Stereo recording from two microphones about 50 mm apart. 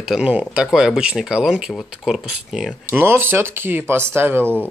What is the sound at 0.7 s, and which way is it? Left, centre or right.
Speech, centre.